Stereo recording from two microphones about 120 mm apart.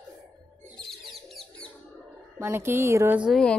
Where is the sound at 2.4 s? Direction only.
20° right (ahead or behind).